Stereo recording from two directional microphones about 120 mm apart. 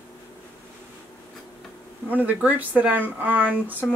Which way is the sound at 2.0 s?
15° right (ahead or behind).